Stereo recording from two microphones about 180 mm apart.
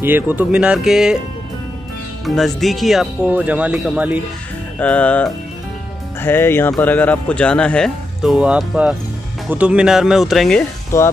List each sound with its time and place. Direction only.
0.0 s speech: 10° right (ahead or behind)
2.2 s speech: centre (ahead or behind)
4.7 s music: 5° left (ahead or behind)
6.7 s speech: 10° left (ahead or behind)
10.9 s music: 15° left (ahead or behind)